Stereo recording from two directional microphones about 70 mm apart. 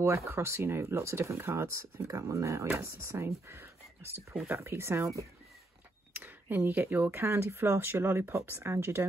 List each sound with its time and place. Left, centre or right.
0.0 s speech: right
6.1 s speech: right